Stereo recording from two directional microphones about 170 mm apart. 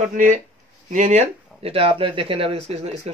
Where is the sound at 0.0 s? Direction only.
45° right (ahead or behind).